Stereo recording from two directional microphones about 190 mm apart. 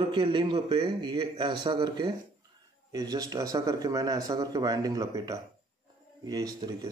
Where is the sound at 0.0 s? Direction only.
25° right (ahead or behind).